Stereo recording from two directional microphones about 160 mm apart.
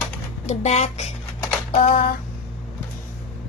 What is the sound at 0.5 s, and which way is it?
Speech, 45° left (ahead or behind).